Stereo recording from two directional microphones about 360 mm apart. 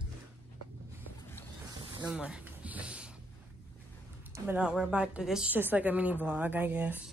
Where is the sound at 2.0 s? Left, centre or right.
Centre.